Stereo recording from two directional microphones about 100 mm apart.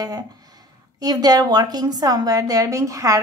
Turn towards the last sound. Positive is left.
turn(degrees=-35)  # may be behind; listen again after turning